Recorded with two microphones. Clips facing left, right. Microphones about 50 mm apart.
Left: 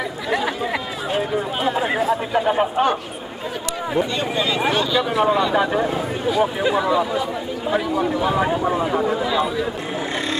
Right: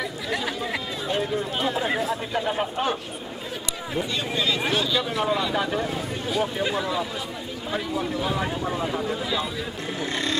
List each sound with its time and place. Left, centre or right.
1.1 s speech: centre
9.2 s speech: centre